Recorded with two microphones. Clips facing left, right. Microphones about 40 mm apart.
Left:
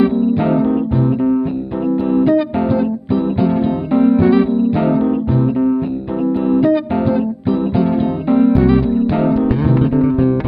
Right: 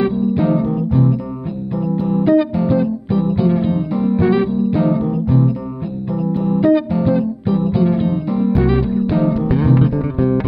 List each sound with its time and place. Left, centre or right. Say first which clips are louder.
0.4 s music: left 2 dB; left
2.2 s music: even; centre
2.8 s music: left 1 dB; centre
3.9 s music: left 10 dB; left
4.2 s music: left 3 dB; centre
4.7 s music: left 2 dB; left
6.6 s music: even; centre
7.2 s music: left 1 dB; centre